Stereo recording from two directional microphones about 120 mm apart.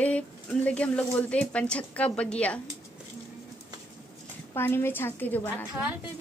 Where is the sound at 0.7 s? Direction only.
10° left (ahead or behind).